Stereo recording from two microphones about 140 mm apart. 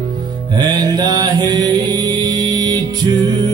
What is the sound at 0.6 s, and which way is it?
Mantra, 30° right (ahead or behind).